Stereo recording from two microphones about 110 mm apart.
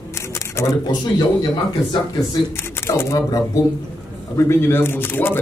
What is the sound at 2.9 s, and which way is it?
Speech, 25° left (ahead or behind).